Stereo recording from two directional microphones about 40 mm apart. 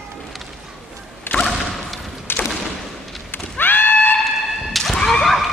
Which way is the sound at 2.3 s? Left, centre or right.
Left.